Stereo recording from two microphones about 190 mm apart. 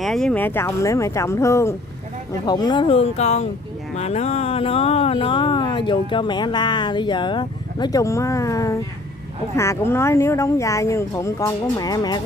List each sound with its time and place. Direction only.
0.0 s speech: centre (ahead or behind); by 12.2 s 20° left (ahead or behind)